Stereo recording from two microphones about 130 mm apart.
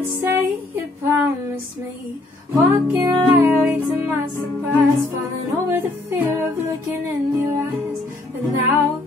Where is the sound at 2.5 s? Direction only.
20° right (ahead or behind).